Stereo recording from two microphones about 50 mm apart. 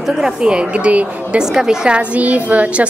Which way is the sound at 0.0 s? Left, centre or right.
Centre.